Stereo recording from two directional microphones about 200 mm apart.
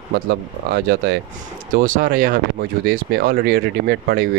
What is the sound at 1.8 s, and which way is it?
Speech, 45° right (ahead or behind).